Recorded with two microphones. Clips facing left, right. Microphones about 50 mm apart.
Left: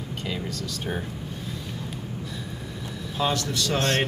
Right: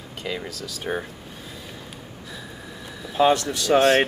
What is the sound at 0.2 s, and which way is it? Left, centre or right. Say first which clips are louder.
Speech: right 2 dB; centre.